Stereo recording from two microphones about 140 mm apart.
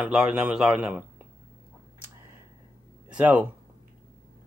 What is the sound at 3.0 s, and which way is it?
Speech, 10° right (ahead or behind).